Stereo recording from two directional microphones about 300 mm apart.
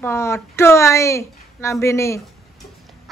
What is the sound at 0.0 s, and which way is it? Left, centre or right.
A woman's voice, centre.